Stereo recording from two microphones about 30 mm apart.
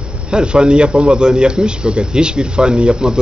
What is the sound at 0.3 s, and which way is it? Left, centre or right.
A man's voice, right.